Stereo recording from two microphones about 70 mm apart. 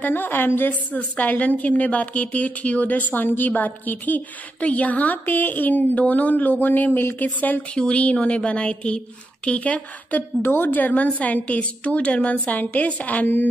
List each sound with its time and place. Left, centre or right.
0.0 s a woman's voice: left